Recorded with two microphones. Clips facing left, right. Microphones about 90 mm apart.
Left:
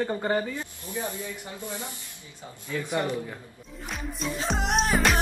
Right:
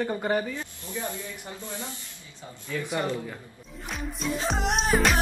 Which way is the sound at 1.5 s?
15° left (ahead or behind).